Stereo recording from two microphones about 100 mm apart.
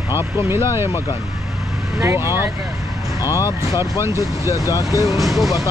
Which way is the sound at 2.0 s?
25° right (ahead or behind).